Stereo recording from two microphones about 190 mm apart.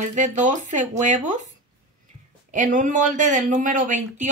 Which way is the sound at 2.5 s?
40° right (ahead or behind).